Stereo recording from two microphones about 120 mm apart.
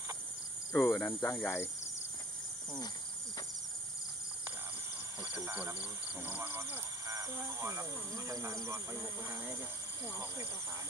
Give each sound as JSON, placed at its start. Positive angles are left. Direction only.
{"t": 0.7, "sound": "speech", "side_deg": 20}
{"t": 5.3, "sound": "speech", "side_deg": -15}
{"t": 7.1, "sound": "speech", "side_deg": -30}